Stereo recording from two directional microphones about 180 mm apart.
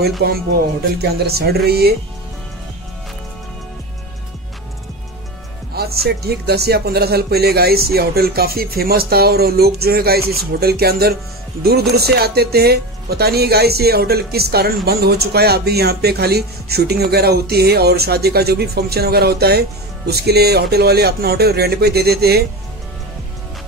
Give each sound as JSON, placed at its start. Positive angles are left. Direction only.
{"t": 0.2, "sound": "speech", "side_deg": -60}
{"t": 6.0, "sound": "speech", "side_deg": -65}